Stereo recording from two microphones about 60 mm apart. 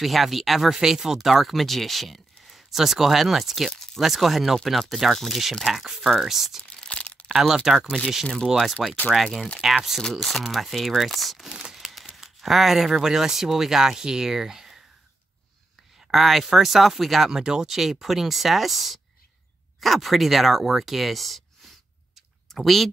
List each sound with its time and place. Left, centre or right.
0.0 s speech: centre
6.7 s a sound: centre
7.2 s speech: centre
16.1 s speech: centre